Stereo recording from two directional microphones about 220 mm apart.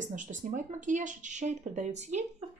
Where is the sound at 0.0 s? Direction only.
35° right (ahead or behind).